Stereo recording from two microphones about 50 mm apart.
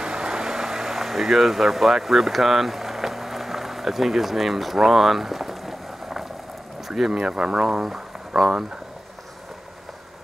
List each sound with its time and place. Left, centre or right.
0.0 s vehicle: centre
6.9 s speech: centre